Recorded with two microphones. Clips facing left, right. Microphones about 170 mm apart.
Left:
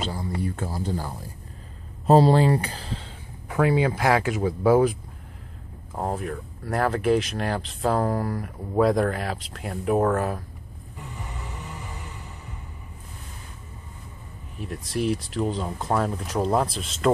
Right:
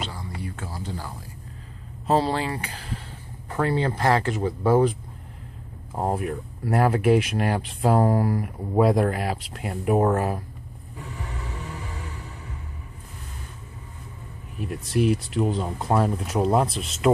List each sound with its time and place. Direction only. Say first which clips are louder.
0.0 s a sound: left 5 dB; 40° left (ahead or behind)
2.0 s speech: left 6 dB; 40° left (ahead or behind)
3.4 s speech: left 3 dB; 10° left (ahead or behind)
5.9 s speech: right 3 dB; 10° right (ahead or behind)
14.9 s speech: right 3 dB; centre (ahead or behind)